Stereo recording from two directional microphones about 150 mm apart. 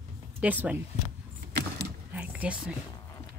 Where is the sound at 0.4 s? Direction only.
10° right (ahead or behind).